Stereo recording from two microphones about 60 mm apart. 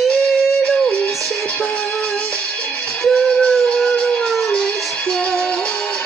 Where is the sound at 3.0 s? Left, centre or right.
Centre.